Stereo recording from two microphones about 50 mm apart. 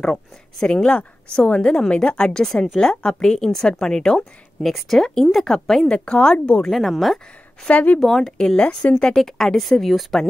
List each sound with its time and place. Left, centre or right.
0.0 s speech: centre
0.8 s a woman's voice: left
4.6 s speech: centre
5.9 s a woman's voice: left
6.6 s speech: centre
7.6 s speech: left
8.0 s speech: centre